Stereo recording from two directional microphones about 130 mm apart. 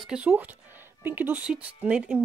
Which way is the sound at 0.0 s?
10° right (ahead or behind).